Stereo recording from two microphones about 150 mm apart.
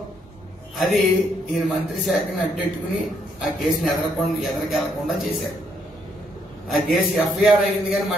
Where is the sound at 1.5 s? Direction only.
Centre (ahead or behind).